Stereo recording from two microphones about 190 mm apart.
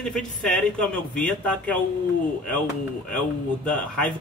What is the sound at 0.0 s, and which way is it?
Speech, 5° left (ahead or behind).